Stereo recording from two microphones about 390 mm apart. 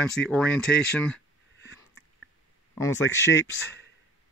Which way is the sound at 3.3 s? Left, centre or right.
Left.